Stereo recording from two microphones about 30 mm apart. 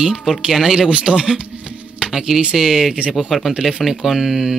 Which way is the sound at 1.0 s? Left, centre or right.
Right.